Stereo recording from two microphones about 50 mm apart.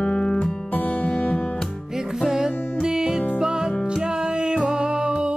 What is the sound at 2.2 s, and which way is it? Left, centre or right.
Music, centre.